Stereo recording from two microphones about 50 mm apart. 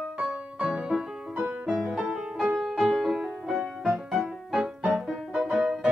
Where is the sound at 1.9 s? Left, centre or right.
Right.